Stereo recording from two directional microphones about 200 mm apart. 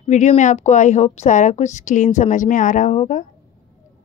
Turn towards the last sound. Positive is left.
turn(degrees=35)  # may be behind; listen again after turning